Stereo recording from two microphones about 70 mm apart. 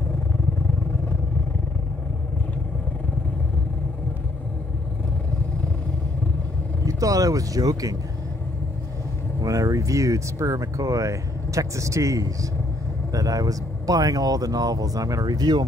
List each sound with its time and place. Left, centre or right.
6.9 s speech: right
9.4 s speech: right